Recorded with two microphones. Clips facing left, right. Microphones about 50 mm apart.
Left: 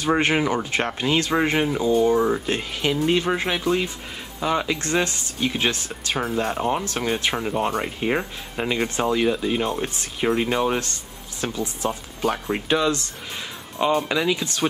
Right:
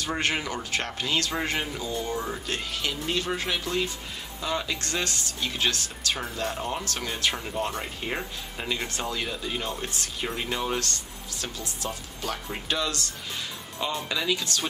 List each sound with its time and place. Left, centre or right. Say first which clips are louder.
0.2 s speech: left 7 dB; left
6.3 s speech: left 7 dB; left
6.8 s speech: left 5 dB; left
7.3 s speech: left 7 dB; left